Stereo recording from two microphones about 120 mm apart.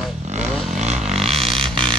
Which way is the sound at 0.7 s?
70° right (ahead or behind).